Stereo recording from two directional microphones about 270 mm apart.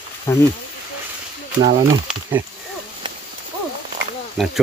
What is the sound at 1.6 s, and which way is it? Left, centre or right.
Speech, centre.